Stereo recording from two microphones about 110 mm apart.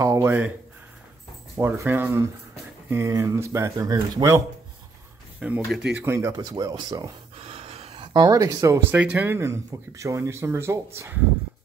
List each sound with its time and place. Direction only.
0.0 s speech: 25° right (ahead or behind)
1.6 s speech: 20° right (ahead or behind)
5.4 s speech: 10° right (ahead or behind)
5.9 s speech: 25° right (ahead or behind)
7.4 s pant: 65° right (ahead or behind)
8.0 s a sound: 45° right (ahead or behind)
8.3 s speech: 30° right (ahead or behind)
8.9 s speech: 15° right (ahead or behind)